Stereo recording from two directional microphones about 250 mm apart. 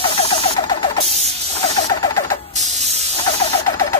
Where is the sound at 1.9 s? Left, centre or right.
Centre.